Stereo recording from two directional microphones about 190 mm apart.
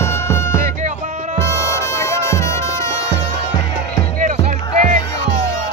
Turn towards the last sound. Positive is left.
turn(degrees=-40)  # may be behind; listen again after turning